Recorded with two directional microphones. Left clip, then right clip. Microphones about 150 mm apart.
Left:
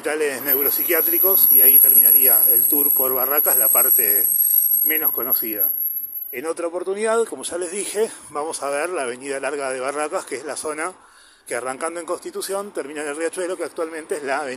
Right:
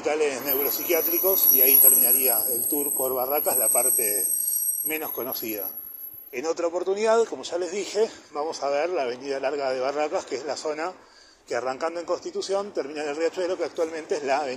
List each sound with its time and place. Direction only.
0.0 s speech: 50° left (ahead or behind)
4.8 s speech: 45° left (ahead or behind)